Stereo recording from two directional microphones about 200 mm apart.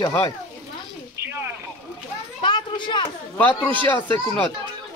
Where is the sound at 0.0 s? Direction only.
20° left (ahead or behind).